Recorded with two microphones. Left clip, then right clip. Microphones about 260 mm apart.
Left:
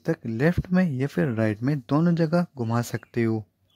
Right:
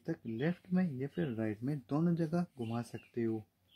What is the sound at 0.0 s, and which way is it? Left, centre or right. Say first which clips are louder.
Speech: left 13 dB; left.